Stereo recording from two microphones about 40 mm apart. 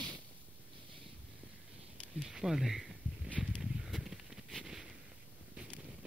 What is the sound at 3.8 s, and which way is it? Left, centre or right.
Horse, centre.